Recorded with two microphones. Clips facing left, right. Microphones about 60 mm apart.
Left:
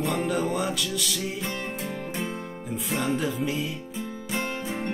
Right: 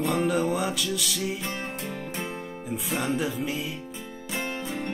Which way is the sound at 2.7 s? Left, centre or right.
Centre.